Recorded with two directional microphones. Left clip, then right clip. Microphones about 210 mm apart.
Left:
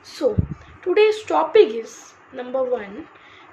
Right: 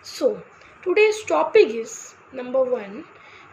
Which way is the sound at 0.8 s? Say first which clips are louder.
Left 1 dB; centre (ahead or behind).